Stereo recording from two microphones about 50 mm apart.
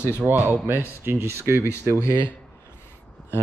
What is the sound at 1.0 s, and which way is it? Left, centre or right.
Speech, right.